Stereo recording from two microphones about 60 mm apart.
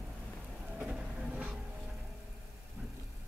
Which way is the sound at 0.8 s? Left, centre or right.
Centre.